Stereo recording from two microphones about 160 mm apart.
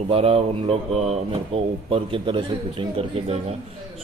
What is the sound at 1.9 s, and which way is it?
A man's voice, 35° right (ahead or behind).